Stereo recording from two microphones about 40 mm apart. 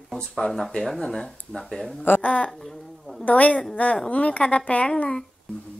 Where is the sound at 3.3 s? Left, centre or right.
Left.